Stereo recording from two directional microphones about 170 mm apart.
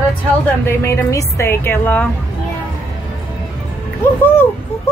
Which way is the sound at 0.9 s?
20° left (ahead or behind).